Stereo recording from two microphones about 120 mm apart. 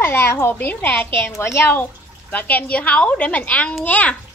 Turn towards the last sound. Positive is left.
turn(degrees=15)  # may be behind; listen again after turning